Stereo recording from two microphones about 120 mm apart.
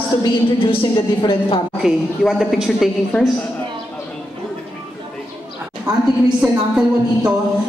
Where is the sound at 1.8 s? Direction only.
Centre (ahead or behind).